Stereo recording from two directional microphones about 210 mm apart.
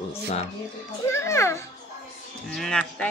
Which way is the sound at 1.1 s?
15° left (ahead or behind).